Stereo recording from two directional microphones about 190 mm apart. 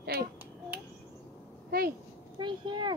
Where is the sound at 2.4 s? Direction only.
25° right (ahead or behind).